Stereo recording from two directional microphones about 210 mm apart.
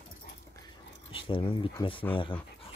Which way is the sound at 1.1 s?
25° left (ahead or behind).